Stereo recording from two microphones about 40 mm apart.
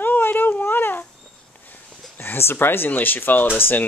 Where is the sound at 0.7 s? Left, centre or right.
Left.